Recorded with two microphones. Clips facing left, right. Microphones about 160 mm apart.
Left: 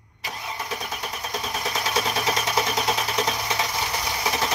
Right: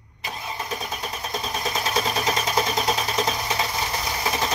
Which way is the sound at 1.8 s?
20° right (ahead or behind).